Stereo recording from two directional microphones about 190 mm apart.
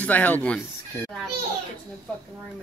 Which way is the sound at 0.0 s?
10° left (ahead or behind).